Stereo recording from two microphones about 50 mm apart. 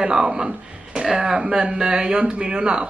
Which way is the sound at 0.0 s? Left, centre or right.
Centre.